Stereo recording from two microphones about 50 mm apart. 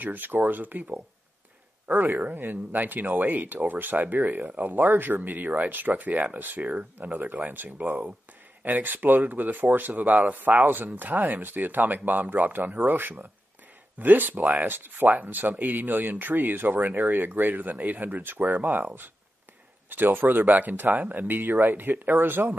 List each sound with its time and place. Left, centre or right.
0.0 s speech: right